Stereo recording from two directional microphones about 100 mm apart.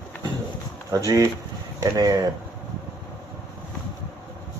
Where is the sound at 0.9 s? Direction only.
35° right (ahead or behind).